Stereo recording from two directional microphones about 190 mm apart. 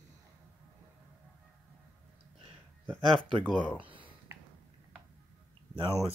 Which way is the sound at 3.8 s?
25° right (ahead or behind).